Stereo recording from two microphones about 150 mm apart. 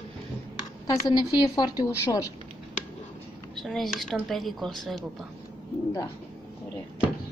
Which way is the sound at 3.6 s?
Centre (ahead or behind).